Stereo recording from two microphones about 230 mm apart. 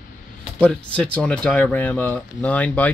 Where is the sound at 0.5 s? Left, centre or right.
Centre.